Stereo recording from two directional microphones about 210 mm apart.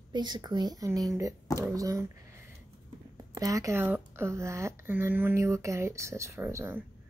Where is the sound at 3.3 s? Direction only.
15° right (ahead or behind).